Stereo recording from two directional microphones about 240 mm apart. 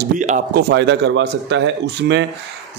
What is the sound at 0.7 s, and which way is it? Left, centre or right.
Speech, right.